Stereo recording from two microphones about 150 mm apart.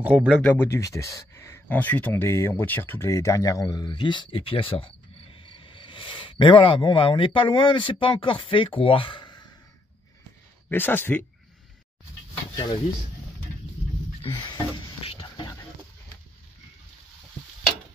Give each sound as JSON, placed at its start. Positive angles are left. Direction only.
{"t": 0.0, "sound": "speech", "side_deg": -10}
{"t": 0.4, "sound": "speech", "side_deg": 10}
{"t": 10.7, "sound": "speech", "side_deg": 15}
{"t": 14.2, "sound": "stir", "side_deg": 35}